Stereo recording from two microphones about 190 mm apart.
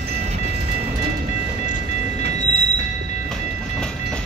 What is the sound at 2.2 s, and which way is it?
Train, 55° right (ahead or behind).